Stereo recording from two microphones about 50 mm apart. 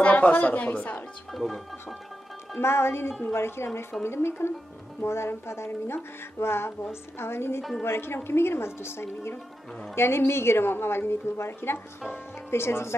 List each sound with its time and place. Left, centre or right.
0.0 s a woman's voice: left
1.3 s speech: centre
2.6 s a woman's voice: left